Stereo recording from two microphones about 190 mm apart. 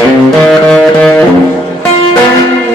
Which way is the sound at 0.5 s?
5° left (ahead or behind).